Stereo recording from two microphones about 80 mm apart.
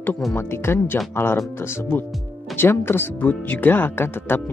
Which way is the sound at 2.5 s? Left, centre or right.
Left.